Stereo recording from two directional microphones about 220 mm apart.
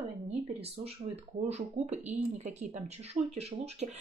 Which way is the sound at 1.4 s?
30° right (ahead or behind).